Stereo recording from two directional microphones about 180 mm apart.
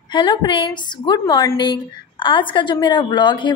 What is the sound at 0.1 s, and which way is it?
A woman's voice, 25° left (ahead or behind).